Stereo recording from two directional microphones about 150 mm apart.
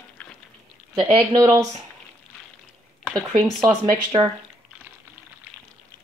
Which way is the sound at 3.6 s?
35° right (ahead or behind).